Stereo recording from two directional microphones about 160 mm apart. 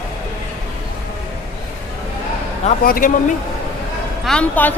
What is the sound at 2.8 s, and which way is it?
Speech, 65° left (ahead or behind).